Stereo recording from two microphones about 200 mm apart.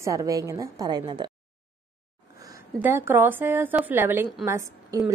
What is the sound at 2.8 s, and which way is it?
A woman's voice, 10° right (ahead or behind).